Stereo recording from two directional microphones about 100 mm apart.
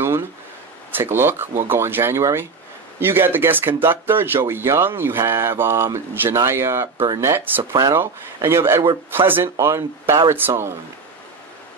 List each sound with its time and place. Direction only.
0.9 s speech: 25° right (ahead or behind)